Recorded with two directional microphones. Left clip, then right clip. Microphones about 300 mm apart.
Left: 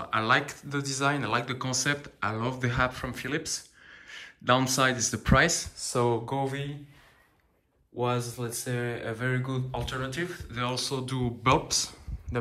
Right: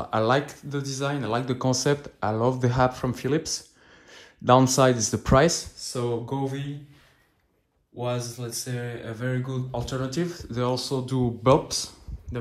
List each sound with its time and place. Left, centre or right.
0.0 s speech: centre
5.8 s speech: centre
8.0 s speech: centre